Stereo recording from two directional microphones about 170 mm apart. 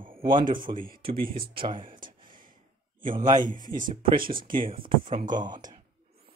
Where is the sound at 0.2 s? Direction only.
30° right (ahead or behind).